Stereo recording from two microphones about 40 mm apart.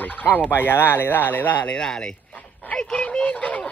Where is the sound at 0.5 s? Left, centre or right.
Left.